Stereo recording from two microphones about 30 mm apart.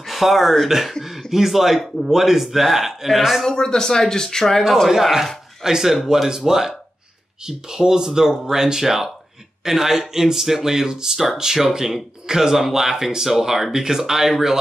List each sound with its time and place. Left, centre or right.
0.1 s a man's voice: centre
3.4 s speech: centre
4.8 s speech: centre